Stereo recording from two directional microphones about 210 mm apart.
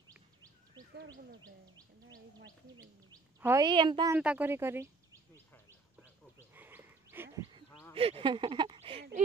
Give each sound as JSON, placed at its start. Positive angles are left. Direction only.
{"t": 0.9, "sound": "speech", "side_deg": -50}
{"t": 3.1, "sound": "speech", "side_deg": -15}
{"t": 4.1, "sound": "speech", "side_deg": -5}
{"t": 6.5, "sound": "a sound", "side_deg": -10}
{"t": 7.9, "sound": "speech", "side_deg": -25}